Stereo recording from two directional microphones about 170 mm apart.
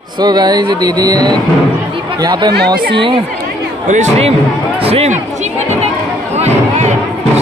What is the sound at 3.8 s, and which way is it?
Speech, 45° right (ahead or behind).